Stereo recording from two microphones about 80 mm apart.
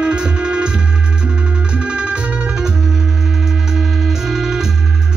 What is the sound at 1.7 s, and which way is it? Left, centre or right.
Music, centre.